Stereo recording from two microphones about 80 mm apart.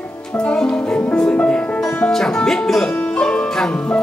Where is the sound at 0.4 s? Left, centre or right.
Centre.